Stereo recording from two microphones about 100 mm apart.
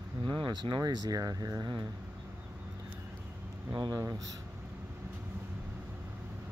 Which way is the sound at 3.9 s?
35° right (ahead or behind).